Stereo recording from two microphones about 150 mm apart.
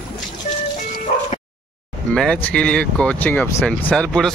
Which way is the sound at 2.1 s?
5° left (ahead or behind).